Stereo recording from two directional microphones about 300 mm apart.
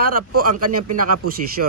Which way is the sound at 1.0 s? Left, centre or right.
Right.